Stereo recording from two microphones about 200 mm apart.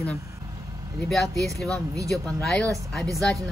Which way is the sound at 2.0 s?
15° right (ahead or behind).